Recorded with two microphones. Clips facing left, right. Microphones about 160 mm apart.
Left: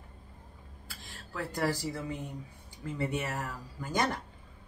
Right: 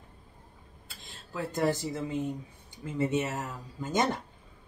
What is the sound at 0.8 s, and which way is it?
Speech, 20° right (ahead or behind).